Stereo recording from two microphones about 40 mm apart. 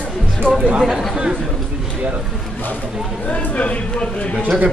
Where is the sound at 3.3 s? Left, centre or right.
Left.